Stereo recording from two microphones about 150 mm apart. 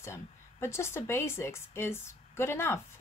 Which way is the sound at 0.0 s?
15° left (ahead or behind).